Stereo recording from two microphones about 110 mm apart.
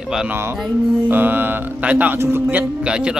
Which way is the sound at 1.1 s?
15° right (ahead or behind).